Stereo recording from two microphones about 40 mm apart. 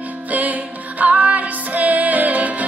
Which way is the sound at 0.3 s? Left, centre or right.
Right.